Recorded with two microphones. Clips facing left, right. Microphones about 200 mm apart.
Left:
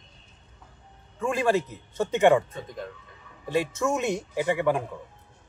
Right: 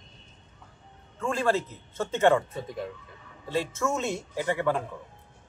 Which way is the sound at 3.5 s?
15° left (ahead or behind).